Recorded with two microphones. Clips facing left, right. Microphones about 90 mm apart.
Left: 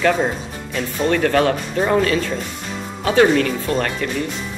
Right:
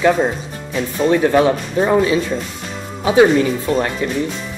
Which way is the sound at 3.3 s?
15° right (ahead or behind).